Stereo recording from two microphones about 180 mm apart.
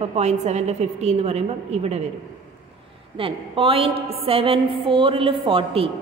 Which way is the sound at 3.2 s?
30° right (ahead or behind).